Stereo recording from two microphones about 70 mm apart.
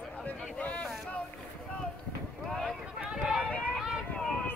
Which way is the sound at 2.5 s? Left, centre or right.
Centre.